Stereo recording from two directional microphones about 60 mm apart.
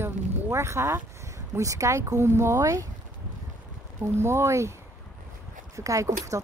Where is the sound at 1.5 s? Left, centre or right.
Right.